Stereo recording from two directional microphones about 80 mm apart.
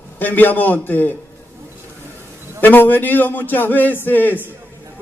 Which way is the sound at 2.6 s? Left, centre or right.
Left.